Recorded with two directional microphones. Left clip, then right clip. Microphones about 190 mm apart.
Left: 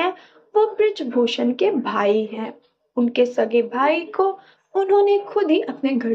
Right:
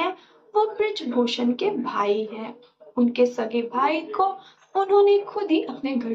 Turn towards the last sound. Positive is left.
turn(degrees=20)  # may be behind; listen again after turning